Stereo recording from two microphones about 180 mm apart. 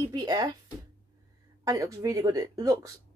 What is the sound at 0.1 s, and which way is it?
Speech, 25° right (ahead or behind).